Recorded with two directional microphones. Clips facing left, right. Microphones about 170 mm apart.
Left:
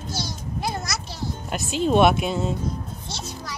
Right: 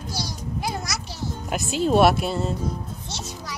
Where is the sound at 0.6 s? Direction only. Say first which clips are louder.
Left 1 dB; 10° right (ahead or behind).